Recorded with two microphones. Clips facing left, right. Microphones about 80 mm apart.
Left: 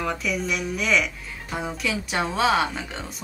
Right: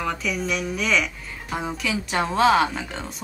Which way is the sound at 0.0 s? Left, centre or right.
Centre.